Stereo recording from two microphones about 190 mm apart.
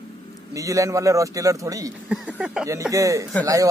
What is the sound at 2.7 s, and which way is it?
Speech, 15° right (ahead or behind).